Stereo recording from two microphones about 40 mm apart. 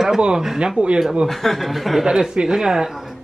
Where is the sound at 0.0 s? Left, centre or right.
Centre.